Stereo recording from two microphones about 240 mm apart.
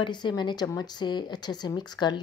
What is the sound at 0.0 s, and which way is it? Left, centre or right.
Speech, centre.